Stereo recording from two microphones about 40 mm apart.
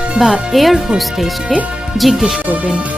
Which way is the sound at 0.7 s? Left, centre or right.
Centre.